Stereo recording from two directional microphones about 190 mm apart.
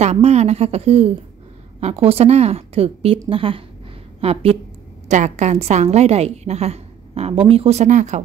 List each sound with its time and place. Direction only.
0.0 s a woman's voice: 35° right (ahead or behind)